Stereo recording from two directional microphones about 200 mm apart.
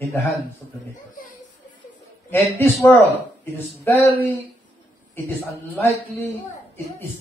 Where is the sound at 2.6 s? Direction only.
10° left (ahead or behind).